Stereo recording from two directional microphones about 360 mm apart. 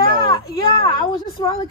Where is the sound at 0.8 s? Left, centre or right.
Centre.